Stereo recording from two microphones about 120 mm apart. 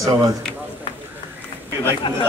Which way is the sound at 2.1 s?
40° left (ahead or behind).